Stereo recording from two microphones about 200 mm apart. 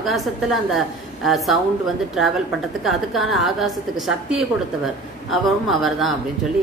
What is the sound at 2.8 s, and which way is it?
A woman's voice, centre (ahead or behind).